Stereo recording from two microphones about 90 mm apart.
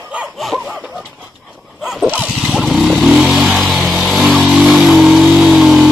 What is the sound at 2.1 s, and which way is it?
Motorcycle, 5° right (ahead or behind).